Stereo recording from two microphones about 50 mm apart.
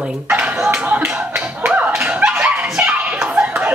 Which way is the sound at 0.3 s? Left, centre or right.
Right.